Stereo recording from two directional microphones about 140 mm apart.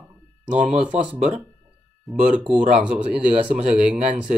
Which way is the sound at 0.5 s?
60° right (ahead or behind).